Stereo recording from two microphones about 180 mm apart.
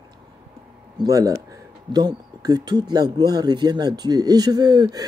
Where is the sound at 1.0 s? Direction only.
20° right (ahead or behind).